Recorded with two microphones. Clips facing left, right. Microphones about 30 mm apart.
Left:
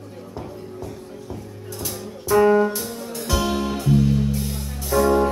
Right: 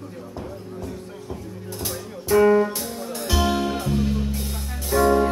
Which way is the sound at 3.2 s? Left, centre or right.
Centre.